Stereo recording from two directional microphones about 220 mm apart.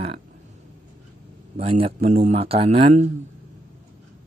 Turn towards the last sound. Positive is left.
turn(degrees=-30)  # may be behind; listen again after turning